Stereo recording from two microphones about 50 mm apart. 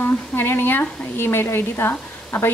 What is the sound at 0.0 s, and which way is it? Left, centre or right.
A woman's voice, left.